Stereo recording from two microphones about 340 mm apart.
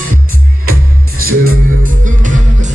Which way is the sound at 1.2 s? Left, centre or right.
Right.